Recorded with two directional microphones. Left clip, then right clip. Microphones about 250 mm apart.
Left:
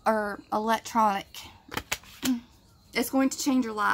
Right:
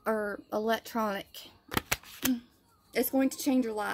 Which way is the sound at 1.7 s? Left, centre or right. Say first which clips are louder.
Right 1 dB; right.